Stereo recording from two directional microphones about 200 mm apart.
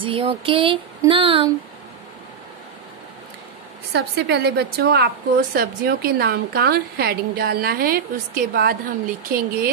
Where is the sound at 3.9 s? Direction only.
55° right (ahead or behind).